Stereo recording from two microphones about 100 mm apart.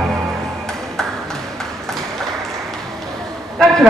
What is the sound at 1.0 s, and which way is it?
Ping, 5° left (ahead or behind).